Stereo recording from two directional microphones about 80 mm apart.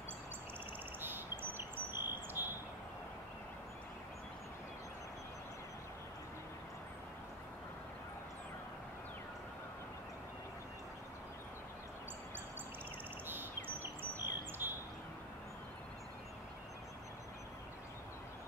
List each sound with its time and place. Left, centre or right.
1.0 s bird: right
13.3 s bird: right